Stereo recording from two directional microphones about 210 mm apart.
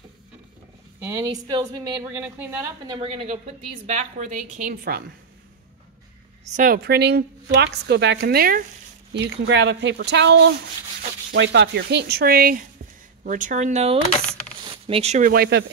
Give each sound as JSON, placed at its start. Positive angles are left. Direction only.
{"t": 0.9, "sound": "a woman's voice", "side_deg": -15}
{"t": 3.0, "sound": "a woman's voice", "side_deg": -30}
{"t": 6.5, "sound": "a woman's voice", "side_deg": -40}
{"t": 9.1, "sound": "speech", "side_deg": -55}
{"t": 11.0, "sound": "sanding", "side_deg": -55}
{"t": 13.2, "sound": "a woman's voice", "side_deg": -40}